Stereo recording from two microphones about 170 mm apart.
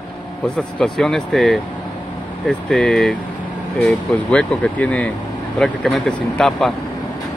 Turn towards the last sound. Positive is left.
turn(degrees=0)  # may be behind; listen again after turning